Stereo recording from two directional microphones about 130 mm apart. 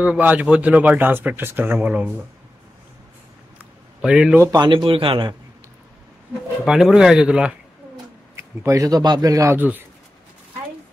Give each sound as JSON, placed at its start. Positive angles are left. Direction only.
{"t": 0.0, "sound": "speech", "side_deg": -10}
{"t": 4.0, "sound": "speech", "side_deg": -10}
{"t": 4.4, "sound": "speech", "side_deg": -30}
{"t": 6.6, "sound": "speech", "side_deg": -5}
{"t": 8.4, "sound": "a man's voice", "side_deg": -25}